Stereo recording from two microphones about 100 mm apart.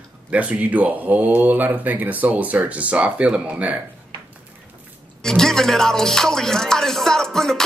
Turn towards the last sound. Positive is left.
turn(degrees=5)  # may be behind; listen again after turning